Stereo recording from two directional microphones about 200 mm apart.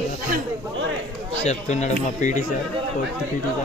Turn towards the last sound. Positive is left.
turn(degrees=35)  # may be behind; listen again after turning